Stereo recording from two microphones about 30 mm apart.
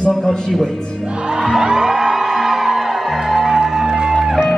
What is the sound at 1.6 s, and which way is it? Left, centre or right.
Music, right.